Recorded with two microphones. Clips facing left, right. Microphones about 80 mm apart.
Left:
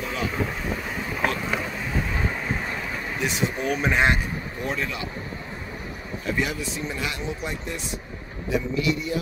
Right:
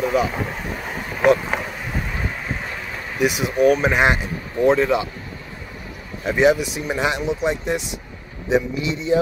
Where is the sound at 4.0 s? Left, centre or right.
Right.